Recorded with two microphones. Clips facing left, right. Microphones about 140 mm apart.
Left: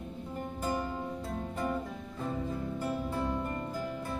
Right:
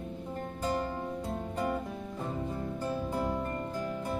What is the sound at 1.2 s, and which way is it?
Music, 15° right (ahead or behind).